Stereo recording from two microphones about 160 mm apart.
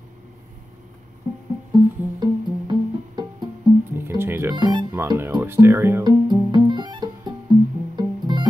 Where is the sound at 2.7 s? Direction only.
25° right (ahead or behind).